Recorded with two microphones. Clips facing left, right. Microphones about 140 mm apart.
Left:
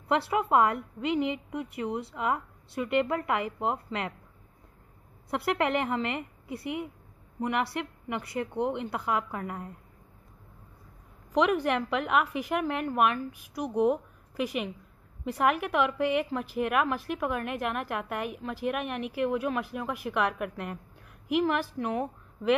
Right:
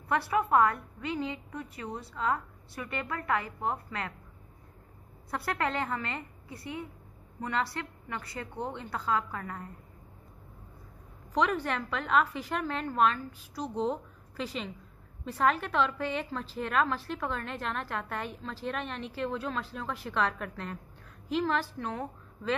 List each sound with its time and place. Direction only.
0.1 s a woman's voice: 20° left (ahead or behind)
5.3 s a woman's voice: 20° left (ahead or behind)
11.3 s a woman's voice: 15° left (ahead or behind)